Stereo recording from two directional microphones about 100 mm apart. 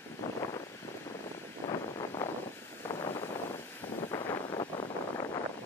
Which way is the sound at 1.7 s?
35° left (ahead or behind).